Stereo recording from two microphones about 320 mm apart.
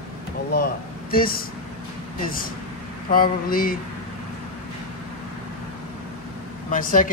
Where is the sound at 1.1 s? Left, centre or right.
Left.